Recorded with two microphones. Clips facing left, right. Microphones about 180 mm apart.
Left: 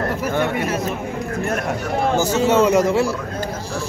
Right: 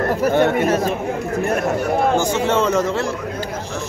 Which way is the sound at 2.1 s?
10° left (ahead or behind).